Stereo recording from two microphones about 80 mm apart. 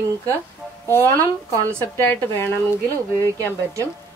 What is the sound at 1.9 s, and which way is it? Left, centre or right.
Speech, left.